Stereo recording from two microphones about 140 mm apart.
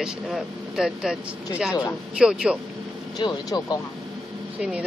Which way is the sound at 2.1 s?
5° right (ahead or behind).